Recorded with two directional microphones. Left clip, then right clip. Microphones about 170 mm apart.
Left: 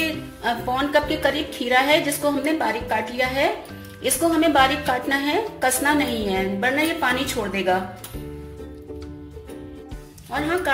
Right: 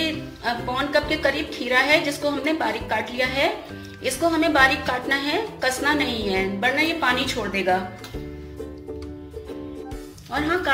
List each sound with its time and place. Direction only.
0.4 s a woman's voice: 25° left (ahead or behind)
10.3 s speech: centre (ahead or behind)